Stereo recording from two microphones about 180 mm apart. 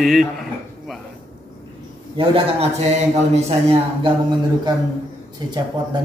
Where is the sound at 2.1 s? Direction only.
35° right (ahead or behind).